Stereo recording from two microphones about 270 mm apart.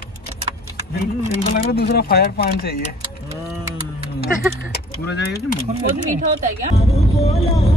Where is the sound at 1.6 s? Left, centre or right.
Left.